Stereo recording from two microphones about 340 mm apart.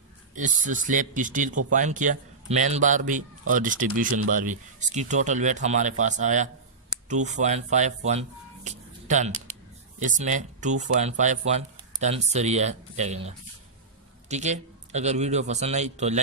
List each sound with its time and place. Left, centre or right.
0.3 s a man's voice: right
14.3 s a man's voice: centre